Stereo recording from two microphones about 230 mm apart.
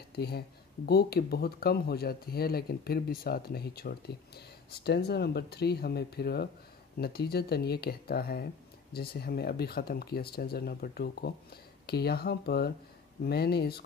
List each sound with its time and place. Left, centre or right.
0.1 s speech: left